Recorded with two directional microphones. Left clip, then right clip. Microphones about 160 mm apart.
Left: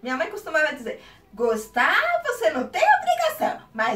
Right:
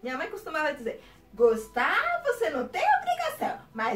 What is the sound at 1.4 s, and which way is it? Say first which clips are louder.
Speech: left 2 dB; 5° right (ahead or behind).